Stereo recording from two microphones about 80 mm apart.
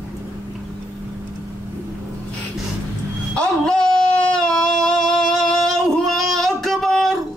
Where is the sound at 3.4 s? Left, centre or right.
Centre.